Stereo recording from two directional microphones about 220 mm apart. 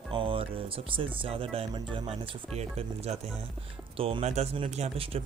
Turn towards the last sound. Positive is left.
turn(degrees=-30)  # may be behind; listen again after turning